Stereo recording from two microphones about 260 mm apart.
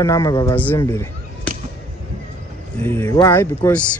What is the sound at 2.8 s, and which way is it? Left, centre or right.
Speech, centre.